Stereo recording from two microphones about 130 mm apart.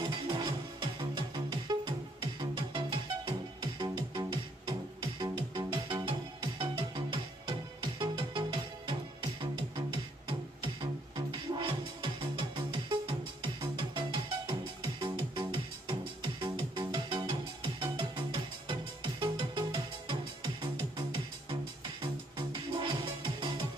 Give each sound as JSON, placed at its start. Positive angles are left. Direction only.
{"t": 0.1, "sound": "music", "side_deg": -35}
{"t": 22.0, "sound": "music", "side_deg": -40}